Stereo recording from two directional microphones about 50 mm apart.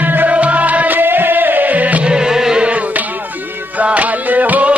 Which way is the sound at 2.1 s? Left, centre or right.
Centre.